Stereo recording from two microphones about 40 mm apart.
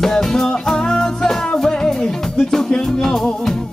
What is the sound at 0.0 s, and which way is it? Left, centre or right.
Music, centre.